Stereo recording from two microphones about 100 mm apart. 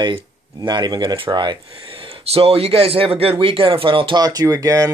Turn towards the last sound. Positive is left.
turn(degrees=-35)  # may be behind; listen again after turning